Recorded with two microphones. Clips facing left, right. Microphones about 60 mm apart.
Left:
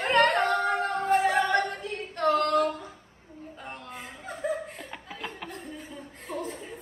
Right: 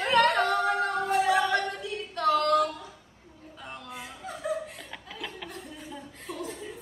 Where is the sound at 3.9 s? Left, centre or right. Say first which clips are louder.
Even; left.